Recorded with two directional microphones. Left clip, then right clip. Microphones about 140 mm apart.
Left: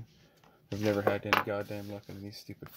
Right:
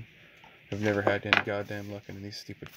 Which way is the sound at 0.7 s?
Centre (ahead or behind).